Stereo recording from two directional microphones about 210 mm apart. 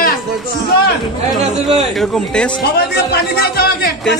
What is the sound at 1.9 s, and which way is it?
Speech, centre (ahead or behind).